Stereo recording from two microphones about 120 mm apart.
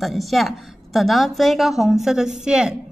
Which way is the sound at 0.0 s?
Centre (ahead or behind).